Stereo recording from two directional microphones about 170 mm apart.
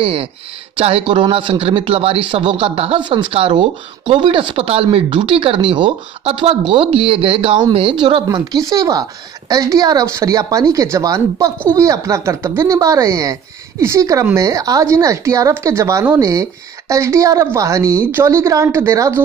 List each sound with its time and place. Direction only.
0.0 s speech: 35° right (ahead or behind); by 19.2 s 15° right (ahead or behind)